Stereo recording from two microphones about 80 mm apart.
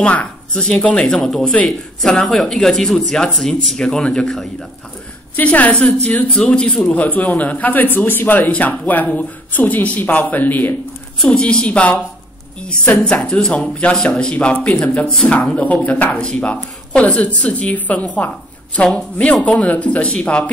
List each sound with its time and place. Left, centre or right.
0.0 s a woman's voice: centre
5.3 s speech: centre
11.1 s speech: centre